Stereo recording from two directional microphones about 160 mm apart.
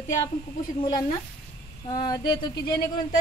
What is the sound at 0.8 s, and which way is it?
A woman's voice, 25° left (ahead or behind).